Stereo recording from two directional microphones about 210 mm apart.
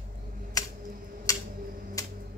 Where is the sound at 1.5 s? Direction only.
40° right (ahead or behind).